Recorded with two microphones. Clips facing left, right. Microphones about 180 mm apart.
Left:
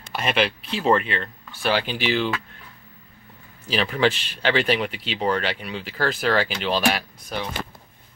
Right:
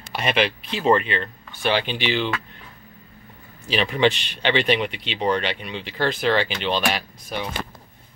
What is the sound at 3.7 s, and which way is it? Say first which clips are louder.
Speech: right 1 dB; centre (ahead or behind).